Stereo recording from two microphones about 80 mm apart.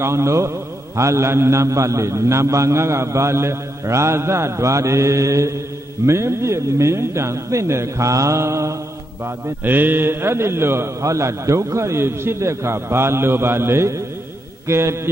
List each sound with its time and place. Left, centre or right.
0.0 s a man's voice: right
9.7 s a man's voice: right